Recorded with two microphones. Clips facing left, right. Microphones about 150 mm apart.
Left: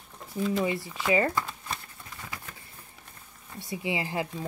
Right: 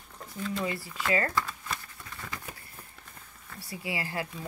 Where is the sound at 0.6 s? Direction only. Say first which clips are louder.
Left 4 dB; 20° left (ahead or behind).